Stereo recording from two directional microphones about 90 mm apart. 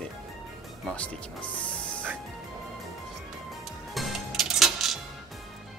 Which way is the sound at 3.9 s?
Centre (ahead or behind).